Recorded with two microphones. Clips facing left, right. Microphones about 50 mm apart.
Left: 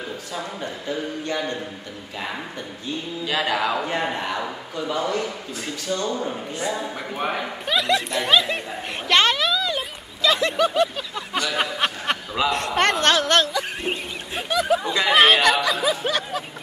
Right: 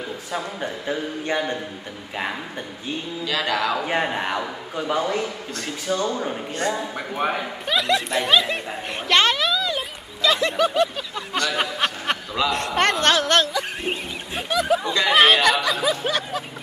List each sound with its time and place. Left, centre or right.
0.6 s speech: right
3.3 s a sound: centre
3.8 s speech: centre
6.8 s speech: centre
9.0 s a sound: centre
12.4 s speech: centre